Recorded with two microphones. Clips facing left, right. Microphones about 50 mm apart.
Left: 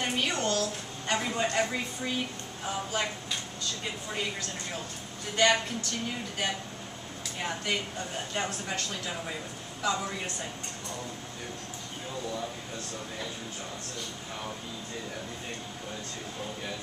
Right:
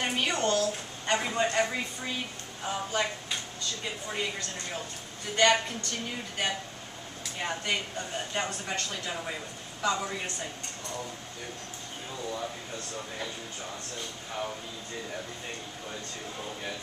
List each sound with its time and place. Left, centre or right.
0.0 s a sound: centre
1.4 s a woman's voice: centre
7.3 s a woman's voice: centre